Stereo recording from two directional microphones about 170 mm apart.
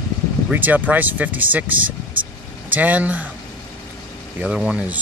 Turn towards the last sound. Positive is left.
turn(degrees=-5)  # may be behind; listen again after turning